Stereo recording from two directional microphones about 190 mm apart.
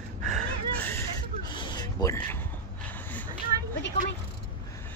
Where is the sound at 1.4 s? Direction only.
25° left (ahead or behind).